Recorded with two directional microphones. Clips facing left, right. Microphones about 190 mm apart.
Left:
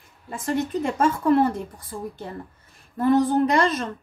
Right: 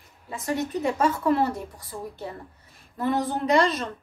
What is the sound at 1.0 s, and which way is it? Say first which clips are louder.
A woman's voice: left 4 dB; 50° left (ahead or behind).